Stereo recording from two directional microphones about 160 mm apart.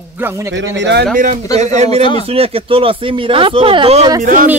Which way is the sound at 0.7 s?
90° right.